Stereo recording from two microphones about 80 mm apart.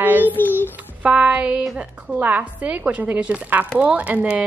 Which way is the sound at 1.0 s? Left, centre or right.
Centre.